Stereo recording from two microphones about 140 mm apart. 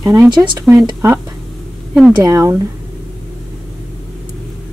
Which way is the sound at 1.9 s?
5° right (ahead or behind).